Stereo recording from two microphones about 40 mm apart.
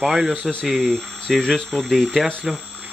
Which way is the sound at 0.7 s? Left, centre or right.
Centre.